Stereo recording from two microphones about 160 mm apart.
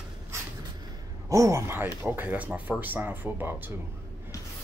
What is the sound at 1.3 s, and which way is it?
Speech, 20° right (ahead or behind).